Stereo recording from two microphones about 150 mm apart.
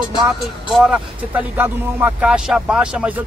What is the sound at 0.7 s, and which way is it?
Speech, 5° right (ahead or behind).